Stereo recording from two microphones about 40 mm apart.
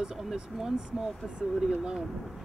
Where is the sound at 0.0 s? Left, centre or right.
Centre.